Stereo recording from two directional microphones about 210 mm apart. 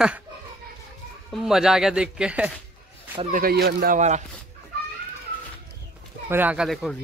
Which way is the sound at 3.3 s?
45° right (ahead or behind).